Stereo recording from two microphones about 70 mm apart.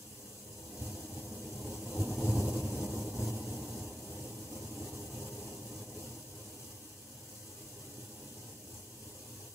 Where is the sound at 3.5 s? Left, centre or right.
Left.